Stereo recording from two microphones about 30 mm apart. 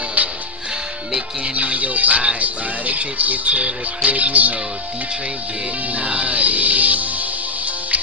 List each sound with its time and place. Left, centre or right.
1.4 s music: right
2.3 s speech: right
3.4 s speech: right
6.0 s music: right